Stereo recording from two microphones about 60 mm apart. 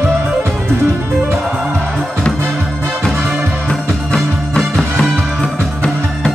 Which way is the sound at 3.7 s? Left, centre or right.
Centre.